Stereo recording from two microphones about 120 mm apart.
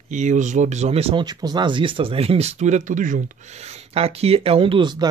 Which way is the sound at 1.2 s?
35° right (ahead or behind).